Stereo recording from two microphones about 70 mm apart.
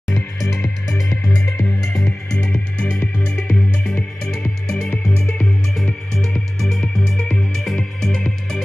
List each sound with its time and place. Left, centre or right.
0.1 s music: left
1.9 s music: centre
6.8 s music: centre